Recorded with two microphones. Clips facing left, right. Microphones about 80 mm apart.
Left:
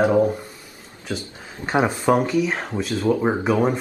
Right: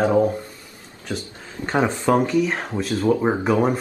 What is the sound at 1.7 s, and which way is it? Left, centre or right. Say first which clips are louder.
Speech: left 1 dB; centre.